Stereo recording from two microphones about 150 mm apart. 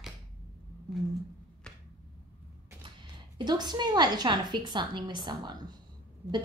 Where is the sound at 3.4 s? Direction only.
30° right (ahead or behind).